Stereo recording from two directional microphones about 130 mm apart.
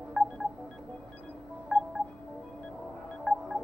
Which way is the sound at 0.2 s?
10° right (ahead or behind).